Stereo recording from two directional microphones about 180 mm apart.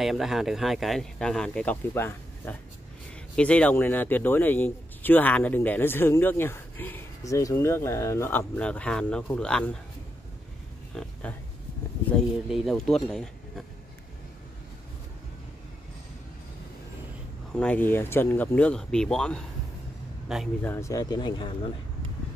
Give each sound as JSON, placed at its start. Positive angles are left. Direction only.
{"t": 0.0, "sound": "speech", "side_deg": 0}
{"t": 11.0, "sound": "speech", "side_deg": 5}
{"t": 12.4, "sound": "speech", "side_deg": 0}
{"t": 17.6, "sound": "speech", "side_deg": 10}
{"t": 20.6, "sound": "speech", "side_deg": 15}